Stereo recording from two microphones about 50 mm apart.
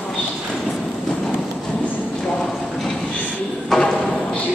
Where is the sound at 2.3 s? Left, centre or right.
Centre.